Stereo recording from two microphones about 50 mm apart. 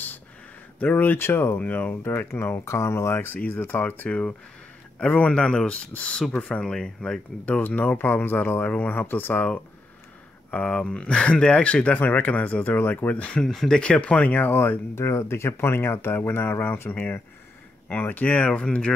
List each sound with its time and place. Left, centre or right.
0.7 s speech: left
1.1 s speech: left
1.6 s speech: left
3.4 s speech: left
5.0 s speech: left
6.6 s speech: centre
7.4 s speech: left
8.1 s speech: left
8.6 s speech: left
10.5 s speech: left
12.9 s speech: left
13.4 s speech: centre; by 15.0 s left
15.0 s speech: left
16.9 s speech: left